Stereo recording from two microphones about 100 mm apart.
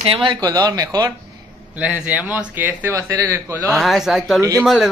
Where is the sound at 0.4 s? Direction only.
40° right (ahead or behind).